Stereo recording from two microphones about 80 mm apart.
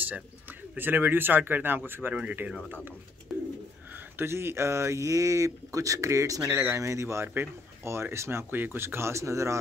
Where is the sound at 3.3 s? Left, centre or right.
Centre.